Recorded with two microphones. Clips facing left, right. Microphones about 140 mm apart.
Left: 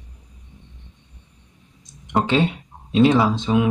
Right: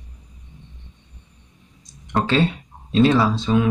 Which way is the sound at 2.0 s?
20° left (ahead or behind).